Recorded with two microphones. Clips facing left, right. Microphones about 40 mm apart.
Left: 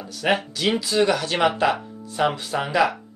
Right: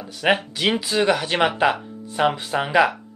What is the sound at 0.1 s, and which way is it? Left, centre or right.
Speech, centre.